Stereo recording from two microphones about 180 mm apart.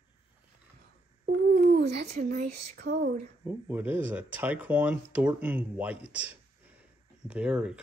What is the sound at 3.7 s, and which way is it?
Speech, 10° right (ahead or behind).